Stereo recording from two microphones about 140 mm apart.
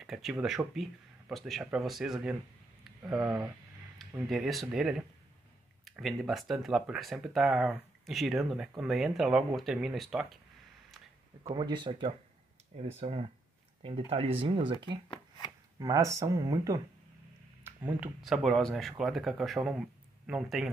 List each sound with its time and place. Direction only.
0.0 s speech: centre (ahead or behind)
3.2 s speech: 30° right (ahead or behind)
4.3 s speech: centre (ahead or behind)
11.4 s speech: 35° right (ahead or behind)
12.7 s speech: 50° right (ahead or behind)
15.0 s shuffling cards: 30° left (ahead or behind)
15.8 s speech: 20° right (ahead or behind)
17.6 s a sound: 15° right (ahead or behind)
18.2 s speech: centre (ahead or behind)